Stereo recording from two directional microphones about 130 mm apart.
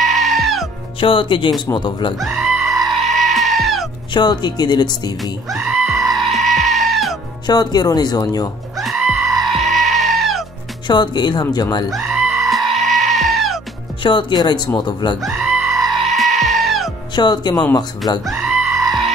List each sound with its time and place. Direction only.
0.0 s music: centre (ahead or behind)
0.9 s speech: 40° left (ahead or behind)
2.1 s goat: centre (ahead or behind)
4.1 s speech: 35° left (ahead or behind)
5.2 s goat: centre (ahead or behind)
7.4 s speech: 30° left (ahead or behind)
8.7 s goat: centre (ahead or behind)
10.9 s speech: 35° left (ahead or behind)
11.9 s goat: centre (ahead or behind)
14.0 s speech: 35° left (ahead or behind)
15.2 s music: 5° right (ahead or behind)
17.1 s speech: 35° left (ahead or behind)
18.2 s goat: centre (ahead or behind)